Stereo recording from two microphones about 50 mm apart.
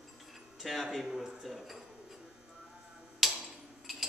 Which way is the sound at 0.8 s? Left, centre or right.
Centre.